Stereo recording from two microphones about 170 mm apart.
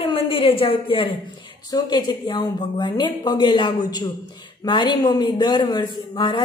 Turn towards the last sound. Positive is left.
turn(degrees=30)  # may be behind; listen again after turning